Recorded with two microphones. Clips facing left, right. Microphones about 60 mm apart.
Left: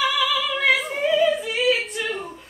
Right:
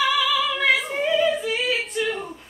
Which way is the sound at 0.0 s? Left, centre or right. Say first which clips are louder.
Right 1 dB; centre.